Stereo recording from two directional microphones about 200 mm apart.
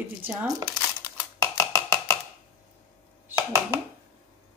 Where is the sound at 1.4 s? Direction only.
15° left (ahead or behind).